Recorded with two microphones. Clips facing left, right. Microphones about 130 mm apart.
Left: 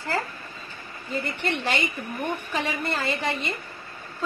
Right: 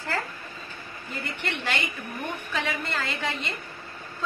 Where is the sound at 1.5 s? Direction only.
15° left (ahead or behind).